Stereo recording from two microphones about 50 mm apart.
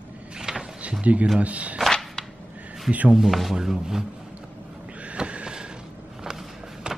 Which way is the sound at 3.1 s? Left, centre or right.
Centre.